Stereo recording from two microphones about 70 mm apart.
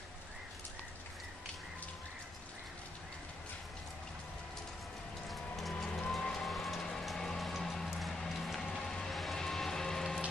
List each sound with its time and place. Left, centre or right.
5.3 s music: centre
5.9 s vehicle: centre
6.1 s music: centre
8.7 s a sound: centre